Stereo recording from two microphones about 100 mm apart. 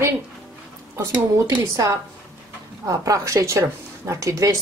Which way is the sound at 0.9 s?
30° right (ahead or behind).